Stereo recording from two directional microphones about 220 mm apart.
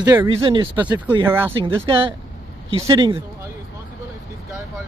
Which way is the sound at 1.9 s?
25° right (ahead or behind).